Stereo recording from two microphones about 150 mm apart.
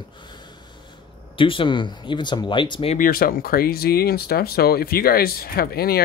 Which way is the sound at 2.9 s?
70° left (ahead or behind).